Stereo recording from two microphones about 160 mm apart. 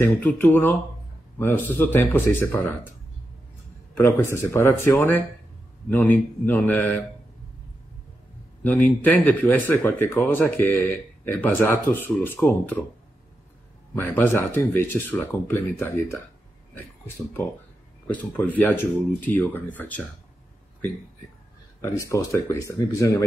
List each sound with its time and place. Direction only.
0.0 s speech: 10° left (ahead or behind)
3.9 s speech: 15° left (ahead or behind)
8.6 s speech: 10° left (ahead or behind)
13.9 s speech: 15° left (ahead or behind)
18.0 s speech: 10° left (ahead or behind)
21.9 s speech: 20° left (ahead or behind)